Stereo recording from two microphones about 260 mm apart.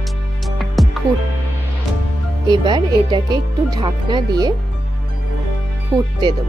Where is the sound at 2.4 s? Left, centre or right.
Centre.